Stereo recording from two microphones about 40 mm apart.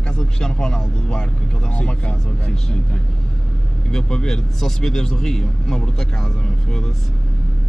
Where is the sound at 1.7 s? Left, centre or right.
Left.